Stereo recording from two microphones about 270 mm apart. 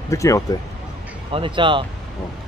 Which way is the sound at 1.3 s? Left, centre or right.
Centre.